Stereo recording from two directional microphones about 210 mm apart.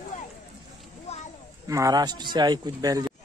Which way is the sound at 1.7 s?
15° right (ahead or behind).